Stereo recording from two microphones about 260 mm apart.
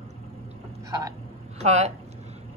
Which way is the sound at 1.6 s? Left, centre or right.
Right.